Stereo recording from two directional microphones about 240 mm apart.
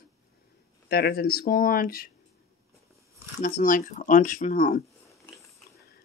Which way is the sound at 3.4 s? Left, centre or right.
Left.